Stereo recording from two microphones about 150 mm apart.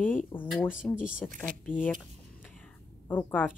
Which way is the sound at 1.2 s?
10° left (ahead or behind).